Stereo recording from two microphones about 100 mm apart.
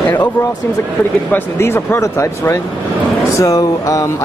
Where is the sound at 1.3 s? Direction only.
25° left (ahead or behind).